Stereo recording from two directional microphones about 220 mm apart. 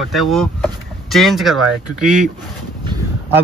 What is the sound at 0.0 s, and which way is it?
Speech, centre (ahead or behind).